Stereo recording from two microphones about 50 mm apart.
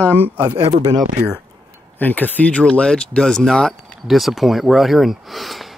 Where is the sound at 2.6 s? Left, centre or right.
Centre.